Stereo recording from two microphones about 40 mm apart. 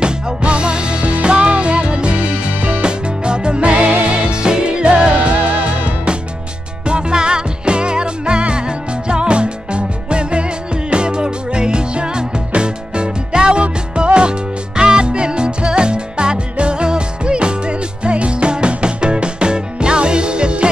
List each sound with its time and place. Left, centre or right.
0.0 s music: right
2.8 s music: right
6.9 s music: right